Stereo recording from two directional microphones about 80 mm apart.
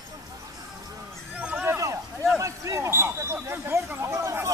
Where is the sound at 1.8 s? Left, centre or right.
Right.